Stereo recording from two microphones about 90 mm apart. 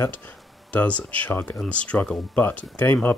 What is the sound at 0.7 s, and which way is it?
Speech, 15° left (ahead or behind).